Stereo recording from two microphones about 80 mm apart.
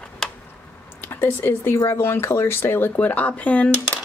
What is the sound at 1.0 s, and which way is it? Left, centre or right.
A woman's voice, left.